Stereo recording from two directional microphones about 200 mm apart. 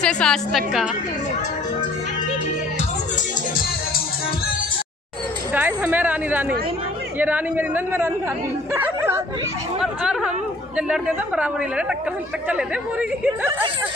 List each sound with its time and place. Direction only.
0.0 s a woman's voice: 5° left (ahead or behind)
5.5 s a woman's voice: 10° right (ahead or behind)